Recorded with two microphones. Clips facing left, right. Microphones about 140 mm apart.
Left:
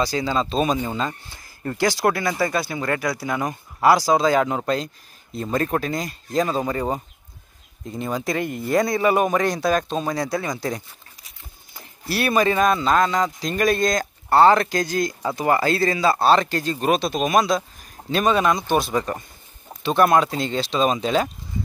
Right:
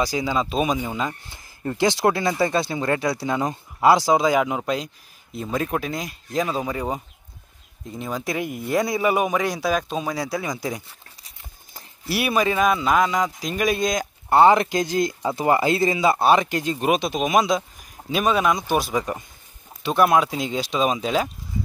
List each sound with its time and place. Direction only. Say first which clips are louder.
0.0 s speech: left 1 dB; 15° right (ahead or behind)
12.1 s speech: left 2 dB; 10° right (ahead or behind)